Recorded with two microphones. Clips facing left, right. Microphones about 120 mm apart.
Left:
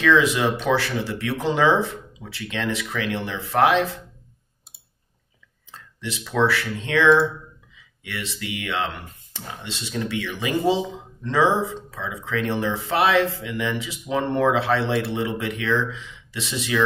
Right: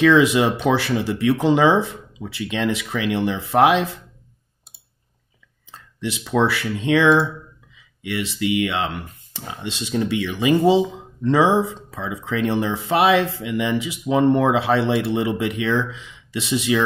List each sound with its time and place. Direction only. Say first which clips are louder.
0.0 s speech: right 4 dB; 15° right (ahead or behind)
5.7 s speech: right 5 dB; 15° right (ahead or behind)
11.9 s speech: right 2 dB; 15° right (ahead or behind)